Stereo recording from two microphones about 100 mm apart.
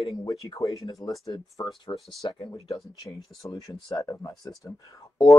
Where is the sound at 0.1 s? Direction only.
40° left (ahead or behind).